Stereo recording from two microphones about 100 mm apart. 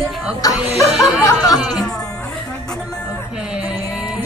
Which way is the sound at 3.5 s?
10° right (ahead or behind).